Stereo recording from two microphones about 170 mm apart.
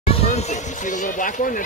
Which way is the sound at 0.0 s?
35° left (ahead or behind).